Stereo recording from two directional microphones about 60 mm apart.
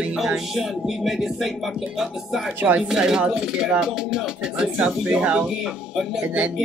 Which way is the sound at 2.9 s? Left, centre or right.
Centre.